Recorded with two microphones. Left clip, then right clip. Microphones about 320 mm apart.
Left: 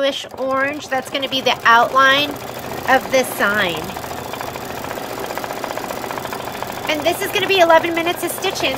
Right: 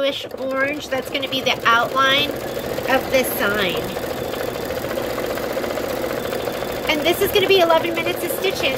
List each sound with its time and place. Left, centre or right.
1.1 s speech: centre
6.9 s speech: centre